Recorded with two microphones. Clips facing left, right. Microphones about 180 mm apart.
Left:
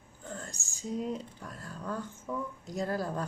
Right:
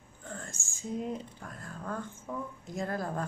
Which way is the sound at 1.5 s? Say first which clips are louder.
Left 1 dB; 35° left (ahead or behind).